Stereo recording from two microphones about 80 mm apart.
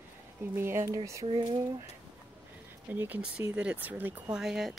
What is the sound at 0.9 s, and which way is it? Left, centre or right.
Speech, right.